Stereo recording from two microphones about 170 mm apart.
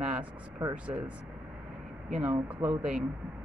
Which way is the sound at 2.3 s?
15° right (ahead or behind).